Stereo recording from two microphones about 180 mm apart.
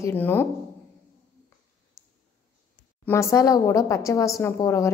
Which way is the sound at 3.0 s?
15° left (ahead or behind).